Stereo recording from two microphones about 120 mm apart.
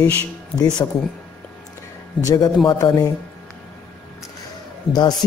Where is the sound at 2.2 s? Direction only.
30° left (ahead or behind).